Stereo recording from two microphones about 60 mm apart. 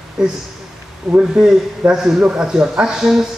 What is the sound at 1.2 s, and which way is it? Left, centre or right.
A man's voice, centre.